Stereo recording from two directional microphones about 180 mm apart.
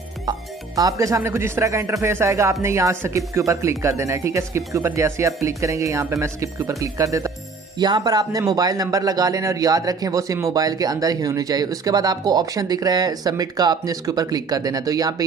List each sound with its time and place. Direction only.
0.7 s speech: 20° right (ahead or behind)